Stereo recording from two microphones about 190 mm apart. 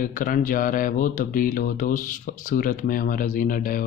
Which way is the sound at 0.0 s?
45° left (ahead or behind).